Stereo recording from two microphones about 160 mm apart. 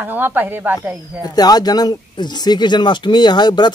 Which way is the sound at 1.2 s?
25° left (ahead or behind).